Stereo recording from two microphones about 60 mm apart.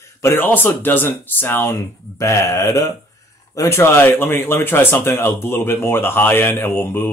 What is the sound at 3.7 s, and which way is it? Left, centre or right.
Speech, left.